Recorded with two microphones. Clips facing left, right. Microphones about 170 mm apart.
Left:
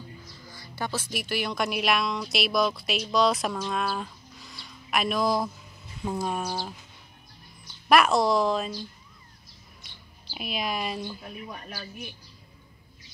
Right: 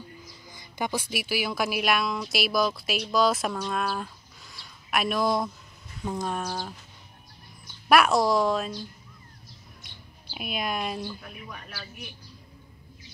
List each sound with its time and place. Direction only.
0.5 s speech: 15° right (ahead or behind); by 5.5 s centre (ahead or behind)
6.0 s a sound: 5° left (ahead or behind)
7.9 s speech: centre (ahead or behind)
10.3 s speech: centre (ahead or behind)
11.4 s speech: 25° left (ahead or behind)